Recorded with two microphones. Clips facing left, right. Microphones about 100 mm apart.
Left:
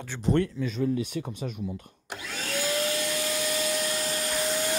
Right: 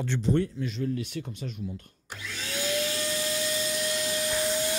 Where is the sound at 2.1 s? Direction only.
50° left (ahead or behind).